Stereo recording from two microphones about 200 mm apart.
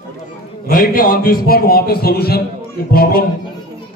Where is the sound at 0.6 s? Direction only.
45° left (ahead or behind).